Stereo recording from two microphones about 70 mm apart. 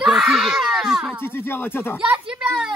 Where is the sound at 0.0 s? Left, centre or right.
Centre.